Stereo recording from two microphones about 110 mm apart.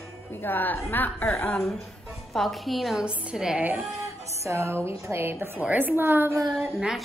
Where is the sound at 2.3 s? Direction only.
Centre (ahead or behind).